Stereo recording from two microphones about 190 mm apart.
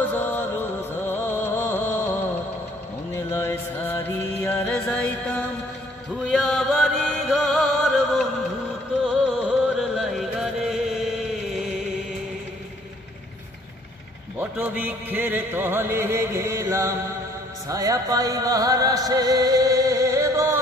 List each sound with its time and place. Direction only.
0.1 s music: 10° left (ahead or behind)
3.3 s music: 10° left (ahead or behind)
14.4 s music: 10° right (ahead or behind)